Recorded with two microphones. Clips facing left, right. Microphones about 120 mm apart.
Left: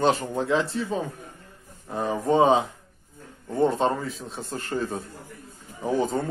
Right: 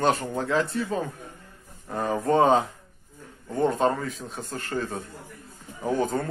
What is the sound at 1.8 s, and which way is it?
Speech, 10° left (ahead or behind).